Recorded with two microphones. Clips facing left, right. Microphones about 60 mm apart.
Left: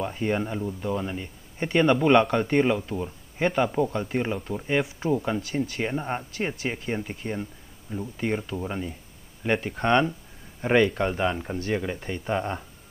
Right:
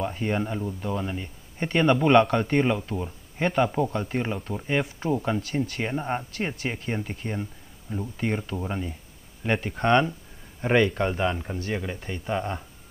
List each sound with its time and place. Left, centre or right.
0.0 s speech: centre